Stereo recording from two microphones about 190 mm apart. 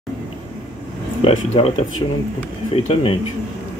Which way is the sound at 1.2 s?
35° left (ahead or behind).